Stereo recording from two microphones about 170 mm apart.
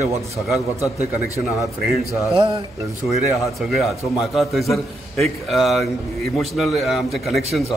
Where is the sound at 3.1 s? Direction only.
Centre (ahead or behind).